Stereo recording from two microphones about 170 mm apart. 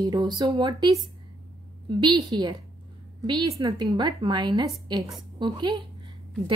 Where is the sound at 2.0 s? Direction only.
25° right (ahead or behind).